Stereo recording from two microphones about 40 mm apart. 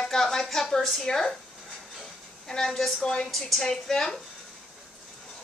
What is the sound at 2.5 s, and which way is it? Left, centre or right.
A woman's voice, centre.